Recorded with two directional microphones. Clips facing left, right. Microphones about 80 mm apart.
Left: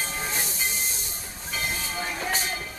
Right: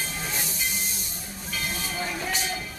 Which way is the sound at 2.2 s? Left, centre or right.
Left.